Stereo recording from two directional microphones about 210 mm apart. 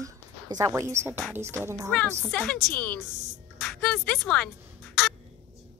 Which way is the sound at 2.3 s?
5° left (ahead or behind).